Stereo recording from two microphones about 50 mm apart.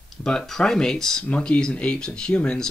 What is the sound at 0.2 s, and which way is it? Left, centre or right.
Speech, centre.